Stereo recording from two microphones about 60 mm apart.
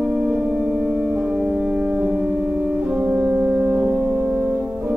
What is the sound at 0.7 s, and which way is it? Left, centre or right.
Music, centre.